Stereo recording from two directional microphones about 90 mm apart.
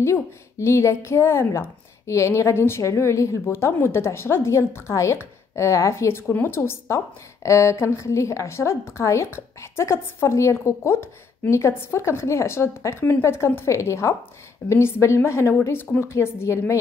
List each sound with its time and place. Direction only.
0.0 s a woman's voice: 30° left (ahead or behind)